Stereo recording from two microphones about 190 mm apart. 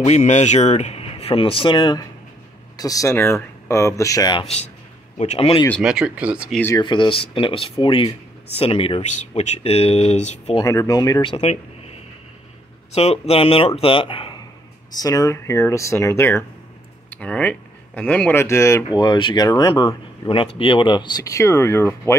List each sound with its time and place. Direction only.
0.0 s speech: 35° left (ahead or behind)
5.1 s speech: 35° left (ahead or behind)
5.8 s speech: 5° right (ahead or behind)
6.8 s speech: 25° left (ahead or behind)
10.6 s speech: 15° left (ahead or behind)
12.9 s speech: 35° left (ahead or behind); by 22.1 s 15° left (ahead or behind)